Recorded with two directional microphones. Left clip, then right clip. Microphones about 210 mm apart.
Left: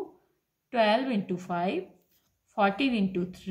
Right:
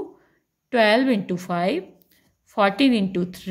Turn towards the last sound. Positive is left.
turn(degrees=-40)  # may be behind; listen again after turning